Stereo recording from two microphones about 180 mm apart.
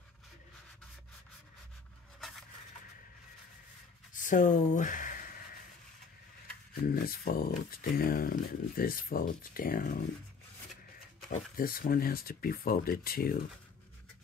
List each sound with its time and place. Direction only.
4.1 s a sound: 45° left (ahead or behind)
6.8 s speech: 55° left (ahead or behind)
11.5 s speech: 55° left (ahead or behind)